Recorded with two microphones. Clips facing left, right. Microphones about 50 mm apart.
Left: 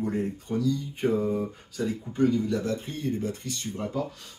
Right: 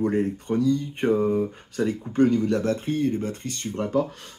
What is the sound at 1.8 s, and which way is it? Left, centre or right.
Speech, right.